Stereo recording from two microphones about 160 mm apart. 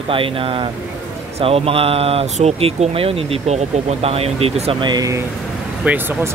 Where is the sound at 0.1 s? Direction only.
35° right (ahead or behind).